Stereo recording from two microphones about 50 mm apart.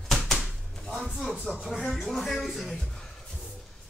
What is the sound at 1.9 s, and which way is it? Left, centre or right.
Speech, centre.